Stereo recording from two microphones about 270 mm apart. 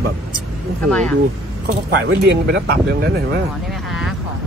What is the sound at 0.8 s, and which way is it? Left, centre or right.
Speech, centre.